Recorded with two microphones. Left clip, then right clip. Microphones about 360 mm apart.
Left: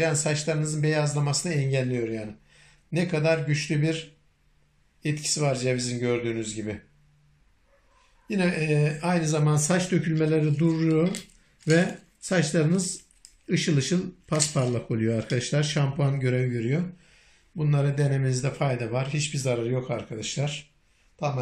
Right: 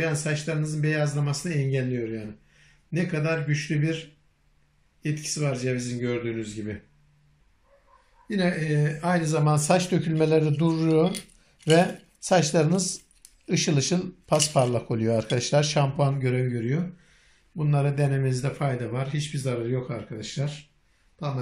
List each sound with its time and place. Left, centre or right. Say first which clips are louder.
0.0 s speech: left 2 dB; centre
5.0 s speech: left 3 dB; centre
8.3 s a man's voice: left 1 dB; centre